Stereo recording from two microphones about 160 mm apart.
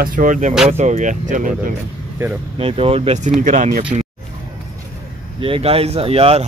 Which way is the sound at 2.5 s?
35° right (ahead or behind).